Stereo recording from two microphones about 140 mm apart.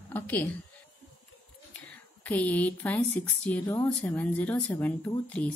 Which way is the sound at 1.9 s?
10° left (ahead or behind).